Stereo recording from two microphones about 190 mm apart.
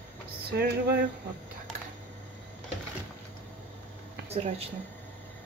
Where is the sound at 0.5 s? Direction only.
60° right (ahead or behind).